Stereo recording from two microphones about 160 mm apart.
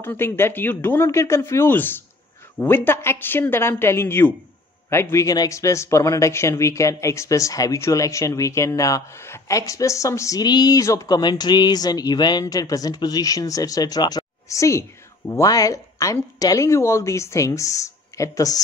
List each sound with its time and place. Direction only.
0.0 s a man's voice: 15° left (ahead or behind)